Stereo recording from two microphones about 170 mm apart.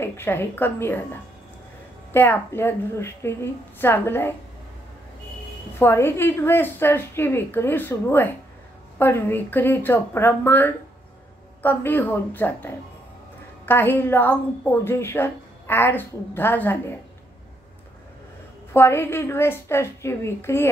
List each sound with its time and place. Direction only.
0.0 s a woman's voice: 15° left (ahead or behind)
5.8 s a woman's voice: 15° left (ahead or behind)
18.7 s a woman's voice: 15° left (ahead or behind)